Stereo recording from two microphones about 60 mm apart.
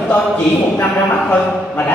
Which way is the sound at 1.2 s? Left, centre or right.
Left.